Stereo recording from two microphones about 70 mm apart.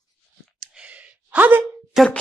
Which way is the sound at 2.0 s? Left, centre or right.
Centre.